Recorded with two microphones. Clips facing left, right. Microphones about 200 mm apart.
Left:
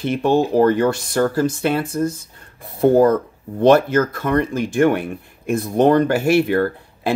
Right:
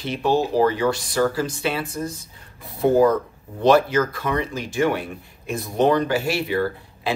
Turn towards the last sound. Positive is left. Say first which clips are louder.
# left 4 dB
turn(degrees=55)  # may be behind; listen again after turning